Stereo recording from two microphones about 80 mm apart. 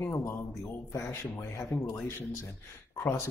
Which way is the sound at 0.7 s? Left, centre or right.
Left.